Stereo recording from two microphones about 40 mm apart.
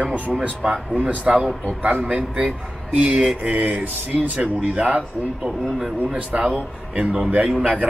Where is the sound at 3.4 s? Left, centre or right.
Right.